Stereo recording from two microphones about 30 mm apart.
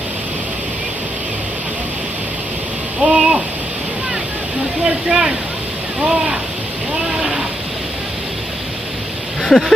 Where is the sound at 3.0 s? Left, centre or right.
Right.